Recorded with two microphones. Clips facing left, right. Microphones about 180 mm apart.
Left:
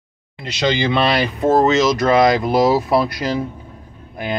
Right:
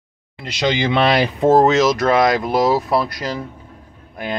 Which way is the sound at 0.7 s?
20° right (ahead or behind).